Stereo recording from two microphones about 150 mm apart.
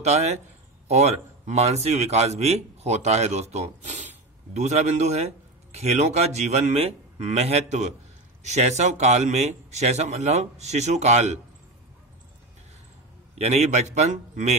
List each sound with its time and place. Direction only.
0.0 s a man's voice: 45° right (ahead or behind)
13.4 s speech: 45° right (ahead or behind)